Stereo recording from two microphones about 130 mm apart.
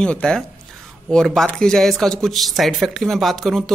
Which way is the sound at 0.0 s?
5° left (ahead or behind).